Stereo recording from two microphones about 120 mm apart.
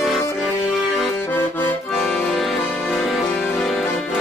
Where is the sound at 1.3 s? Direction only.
15° left (ahead or behind).